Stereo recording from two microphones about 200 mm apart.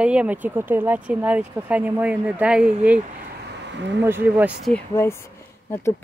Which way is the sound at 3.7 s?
65° right (ahead or behind).